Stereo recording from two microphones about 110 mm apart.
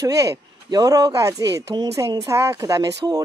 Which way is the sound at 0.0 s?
35° right (ahead or behind).